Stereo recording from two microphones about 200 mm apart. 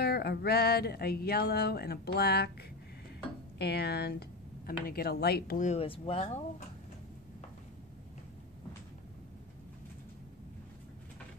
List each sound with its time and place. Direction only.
0.0 s a sound: 55° left (ahead or behind)
3.5 s speech: 55° left (ahead or behind)
5.6 s speech: 35° left (ahead or behind)